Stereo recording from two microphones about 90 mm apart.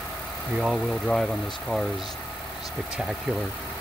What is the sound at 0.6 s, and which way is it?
Speech, 5° right (ahead or behind).